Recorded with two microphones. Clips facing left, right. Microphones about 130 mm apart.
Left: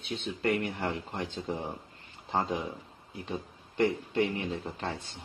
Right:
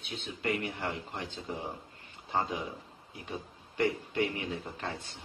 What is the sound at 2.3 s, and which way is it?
Speech, 30° left (ahead or behind).